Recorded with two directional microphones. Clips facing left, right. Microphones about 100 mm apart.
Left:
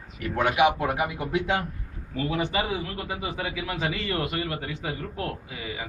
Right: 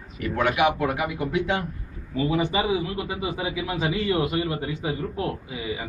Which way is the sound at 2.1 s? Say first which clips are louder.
Right 3 dB; 10° right (ahead or behind).